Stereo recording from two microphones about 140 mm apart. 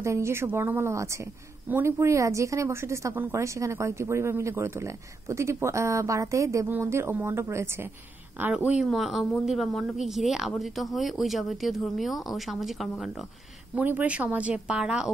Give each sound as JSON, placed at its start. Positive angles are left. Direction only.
{"t": 0.0, "sound": "a woman's voice", "side_deg": -20}
{"t": 13.7, "sound": "speech", "side_deg": -10}